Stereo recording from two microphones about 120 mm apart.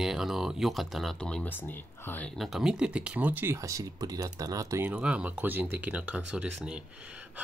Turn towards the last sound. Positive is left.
turn(degrees=-10)  # may be behind; listen again after turning